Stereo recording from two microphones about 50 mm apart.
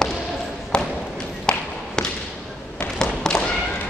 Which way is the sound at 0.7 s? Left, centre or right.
Centre.